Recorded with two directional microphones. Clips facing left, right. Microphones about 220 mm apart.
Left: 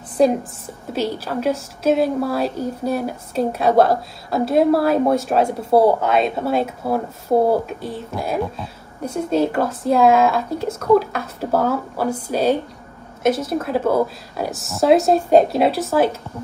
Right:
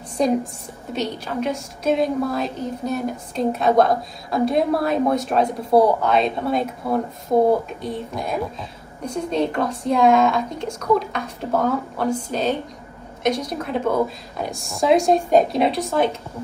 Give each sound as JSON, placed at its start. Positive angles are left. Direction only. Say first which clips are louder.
{"t": 0.2, "sound": "a woman's voice", "louder": "left 3 dB", "side_deg": 5}
{"t": 7.3, "sound": "speech", "louder": "left 1 dB", "side_deg": 30}
{"t": 7.6, "sound": "a woman's voice", "louder": "even", "side_deg": 5}